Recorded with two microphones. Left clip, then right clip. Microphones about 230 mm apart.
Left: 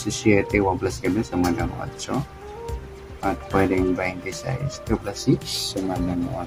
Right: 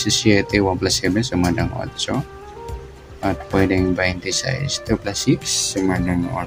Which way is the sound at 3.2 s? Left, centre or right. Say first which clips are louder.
Right 2 dB; centre.